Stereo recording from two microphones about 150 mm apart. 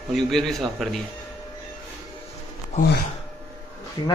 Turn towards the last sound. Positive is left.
turn(degrees=25)  # may be behind; listen again after turning